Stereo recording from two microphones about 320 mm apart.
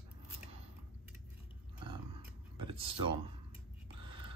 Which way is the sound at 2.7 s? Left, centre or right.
Centre.